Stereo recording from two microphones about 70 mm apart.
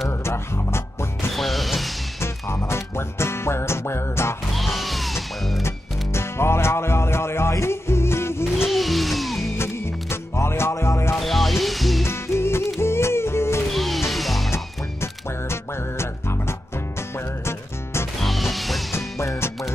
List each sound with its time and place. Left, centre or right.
0.2 s music: left
1.3 s music: centre
2.1 s music: left
4.6 s music: centre
6.1 s music: left
8.5 s music: centre
9.6 s music: left
11.1 s music: centre
12.0 s music: left
13.7 s music: centre
15.5 s music: left
18.2 s music: centre
18.9 s music: left